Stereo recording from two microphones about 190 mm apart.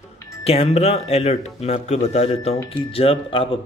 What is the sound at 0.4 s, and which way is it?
A man's voice, 30° left (ahead or behind).